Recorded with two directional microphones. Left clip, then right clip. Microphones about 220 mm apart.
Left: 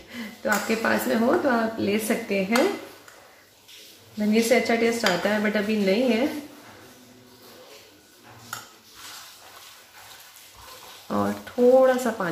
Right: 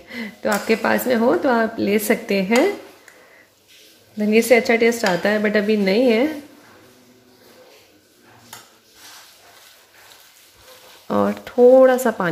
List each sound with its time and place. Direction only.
0.1 s speech: 45° right (ahead or behind)
4.3 s speech: 40° right (ahead or behind)
11.1 s a sound: 40° right (ahead or behind)